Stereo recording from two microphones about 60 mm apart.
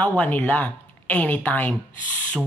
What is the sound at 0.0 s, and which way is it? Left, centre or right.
A man's voice, left.